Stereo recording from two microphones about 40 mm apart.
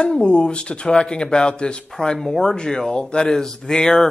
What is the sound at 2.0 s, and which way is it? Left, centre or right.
Speech, centre.